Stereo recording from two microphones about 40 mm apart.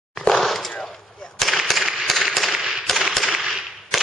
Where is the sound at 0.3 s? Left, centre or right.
Centre.